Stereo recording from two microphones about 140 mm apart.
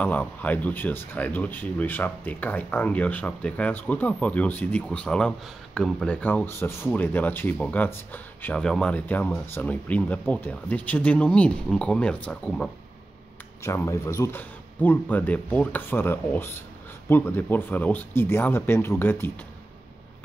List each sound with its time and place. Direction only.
0.0 s speech: 10° left (ahead or behind)
13.6 s speech: 20° left (ahead or behind)